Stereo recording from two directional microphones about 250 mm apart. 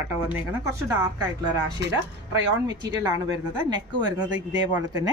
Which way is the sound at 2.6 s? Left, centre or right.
Centre.